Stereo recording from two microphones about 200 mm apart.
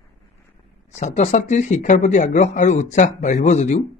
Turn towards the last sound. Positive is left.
turn(degrees=35)  # may be behind; listen again after turning